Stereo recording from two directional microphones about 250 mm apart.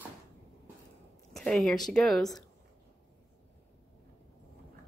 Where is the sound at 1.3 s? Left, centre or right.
Centre.